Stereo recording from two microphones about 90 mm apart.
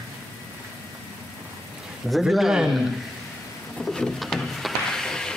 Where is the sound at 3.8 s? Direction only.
5° left (ahead or behind).